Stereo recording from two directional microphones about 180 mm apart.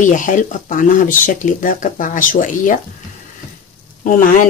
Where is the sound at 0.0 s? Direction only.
45° left (ahead or behind).